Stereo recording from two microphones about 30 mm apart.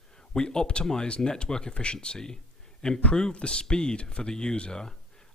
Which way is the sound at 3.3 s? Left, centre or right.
Left.